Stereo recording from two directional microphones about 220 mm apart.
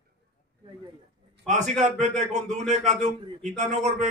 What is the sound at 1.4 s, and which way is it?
Speech, 35° right (ahead or behind).